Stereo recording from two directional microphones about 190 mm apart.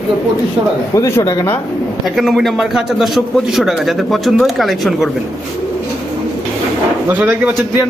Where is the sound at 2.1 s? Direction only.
Centre (ahead or behind).